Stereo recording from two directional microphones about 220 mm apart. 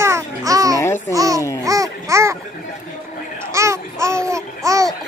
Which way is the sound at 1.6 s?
15° right (ahead or behind).